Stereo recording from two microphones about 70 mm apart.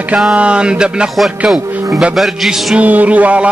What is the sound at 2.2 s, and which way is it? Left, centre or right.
Speech, centre.